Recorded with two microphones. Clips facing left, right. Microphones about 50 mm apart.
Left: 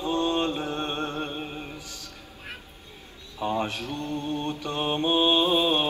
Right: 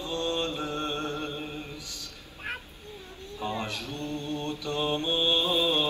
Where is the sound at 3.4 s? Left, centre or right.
Left.